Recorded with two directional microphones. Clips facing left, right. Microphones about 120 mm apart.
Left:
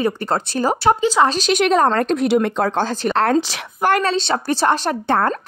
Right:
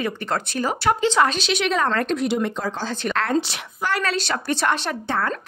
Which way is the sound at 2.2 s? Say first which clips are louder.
Left 6 dB; 65° left (ahead or behind).